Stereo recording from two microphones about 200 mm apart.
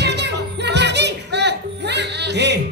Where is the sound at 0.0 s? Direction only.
60° right (ahead or behind).